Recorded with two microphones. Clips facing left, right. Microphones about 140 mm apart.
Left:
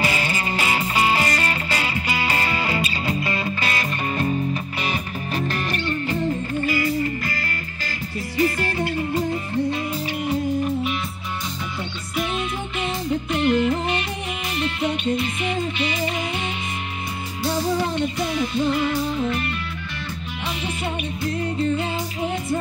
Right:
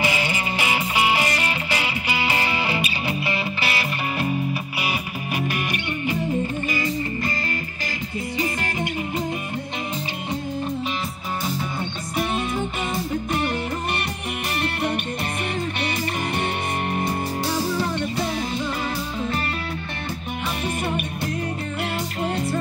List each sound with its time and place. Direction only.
0.0 s music: 15° right (ahead or behind)
8.4 s music: 20° right (ahead or behind)